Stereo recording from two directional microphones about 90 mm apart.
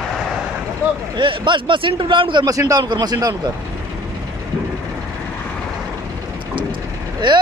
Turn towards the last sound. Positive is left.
turn(degrees=-65)  # may be behind; listen again after turning